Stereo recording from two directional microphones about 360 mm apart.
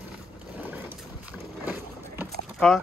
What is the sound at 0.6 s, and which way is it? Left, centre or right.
Boat, centre.